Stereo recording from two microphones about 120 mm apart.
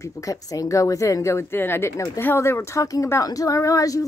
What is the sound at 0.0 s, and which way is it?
Speech, 30° left (ahead or behind).